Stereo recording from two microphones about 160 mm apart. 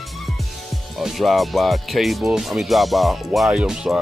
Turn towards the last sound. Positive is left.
turn(degrees=-5)  # may be behind; listen again after turning